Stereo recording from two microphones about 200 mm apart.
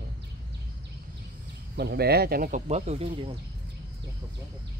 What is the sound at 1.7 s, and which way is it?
Speech, 55° right (ahead or behind).